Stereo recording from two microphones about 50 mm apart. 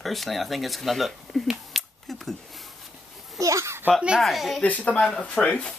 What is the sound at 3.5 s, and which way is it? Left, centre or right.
Speech, right.